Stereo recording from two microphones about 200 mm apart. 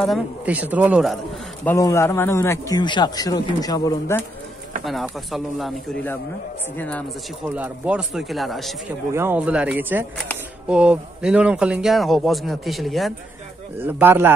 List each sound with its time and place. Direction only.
0.0 s speech: 5° right (ahead or behind)
1.8 s speech: 15° left (ahead or behind)
4.8 s speech: centre (ahead or behind)
6.8 s speech: 5° left (ahead or behind)
7.4 s speech: 5° right (ahead or behind)
9.1 s speech: 10° right (ahead or behind)
13.7 s speech: 10° right (ahead or behind)